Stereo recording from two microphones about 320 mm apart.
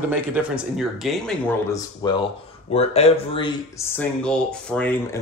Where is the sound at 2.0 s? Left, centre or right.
Centre.